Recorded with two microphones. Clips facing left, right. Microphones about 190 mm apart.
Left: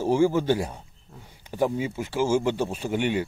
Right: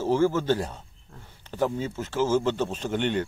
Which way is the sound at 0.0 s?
15° left (ahead or behind).